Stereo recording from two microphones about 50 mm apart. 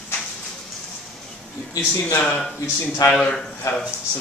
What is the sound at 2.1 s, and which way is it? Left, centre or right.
Speech, left.